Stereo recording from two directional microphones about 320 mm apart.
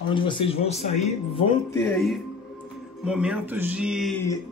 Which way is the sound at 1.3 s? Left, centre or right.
Centre.